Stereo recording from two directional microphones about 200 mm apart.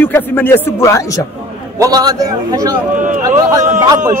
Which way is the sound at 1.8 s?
20° right (ahead or behind).